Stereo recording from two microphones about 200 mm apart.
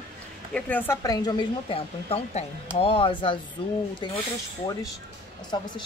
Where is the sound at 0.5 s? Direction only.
5° left (ahead or behind); by 4.2 s 25° left (ahead or behind).